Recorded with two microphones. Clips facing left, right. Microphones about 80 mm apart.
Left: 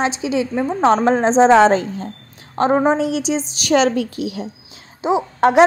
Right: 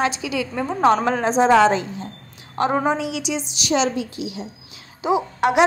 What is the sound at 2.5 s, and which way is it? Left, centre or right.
A woman's voice, left.